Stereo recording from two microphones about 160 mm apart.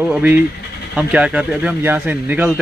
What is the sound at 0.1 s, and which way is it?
Speech, 10° right (ahead or behind).